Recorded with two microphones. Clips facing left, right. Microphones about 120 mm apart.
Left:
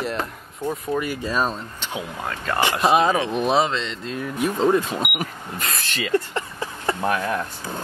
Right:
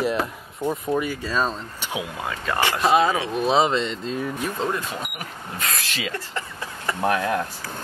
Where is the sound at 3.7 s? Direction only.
5° right (ahead or behind).